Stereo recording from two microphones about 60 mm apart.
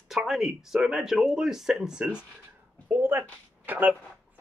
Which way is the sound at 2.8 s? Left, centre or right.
Right.